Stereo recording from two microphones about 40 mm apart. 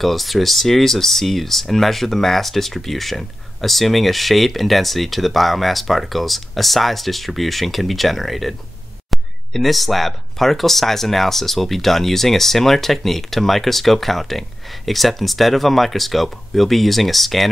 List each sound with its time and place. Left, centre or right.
0.0 s speech: centre